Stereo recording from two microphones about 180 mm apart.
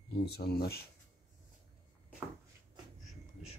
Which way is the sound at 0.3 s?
60° left (ahead or behind).